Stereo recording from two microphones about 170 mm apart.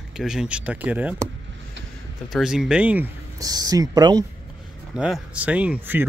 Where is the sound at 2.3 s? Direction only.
Centre (ahead or behind).